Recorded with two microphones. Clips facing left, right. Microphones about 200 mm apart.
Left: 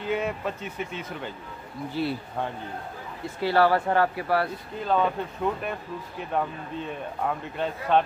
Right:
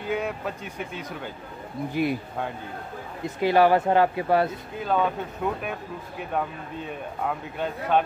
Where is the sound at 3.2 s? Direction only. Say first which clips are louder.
Right 3 dB; 15° right (ahead or behind).